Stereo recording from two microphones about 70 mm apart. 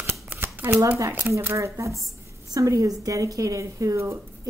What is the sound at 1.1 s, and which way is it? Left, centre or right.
A woman's voice, right.